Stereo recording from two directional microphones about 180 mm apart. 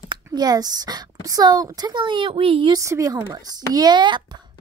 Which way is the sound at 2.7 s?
15° right (ahead or behind).